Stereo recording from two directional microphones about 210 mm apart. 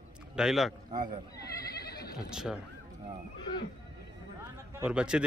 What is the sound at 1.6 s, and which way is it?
Neigh, 50° left (ahead or behind).